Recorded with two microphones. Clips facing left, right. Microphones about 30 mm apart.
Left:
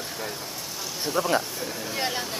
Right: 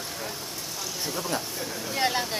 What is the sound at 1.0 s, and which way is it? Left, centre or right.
Speech, centre.